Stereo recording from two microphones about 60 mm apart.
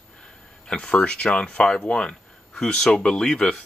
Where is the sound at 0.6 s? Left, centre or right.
Centre.